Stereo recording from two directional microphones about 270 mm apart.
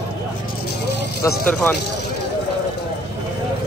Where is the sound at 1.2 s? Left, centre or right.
Centre.